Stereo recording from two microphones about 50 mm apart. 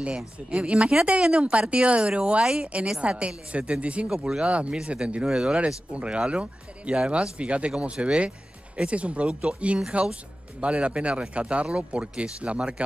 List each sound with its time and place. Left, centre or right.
0.5 s speech: right
2.4 s a woman's voice: centre
5.9 s a woman's voice: right